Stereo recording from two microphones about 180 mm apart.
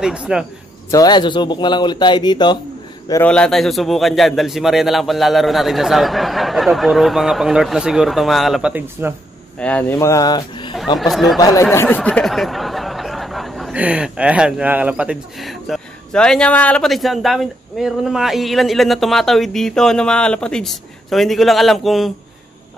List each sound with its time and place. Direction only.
0.0 s speech: 5° right (ahead or behind)
0.9 s speech: 25° left (ahead or behind)
3.3 s speech: 5° left (ahead or behind)
9.6 s speech: 5° left (ahead or behind)
11.0 s speech: centre (ahead or behind)
11.3 s speech: 20° left (ahead or behind); by 22.1 s centre (ahead or behind)